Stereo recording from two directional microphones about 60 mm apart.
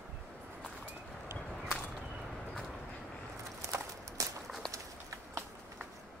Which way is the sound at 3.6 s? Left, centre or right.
Right.